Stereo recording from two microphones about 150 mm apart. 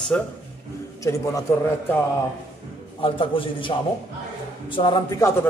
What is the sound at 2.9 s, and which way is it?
A man's voice, 35° left (ahead or behind).